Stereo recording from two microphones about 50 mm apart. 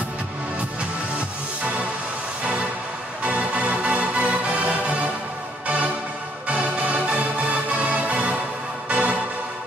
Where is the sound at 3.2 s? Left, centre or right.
Right.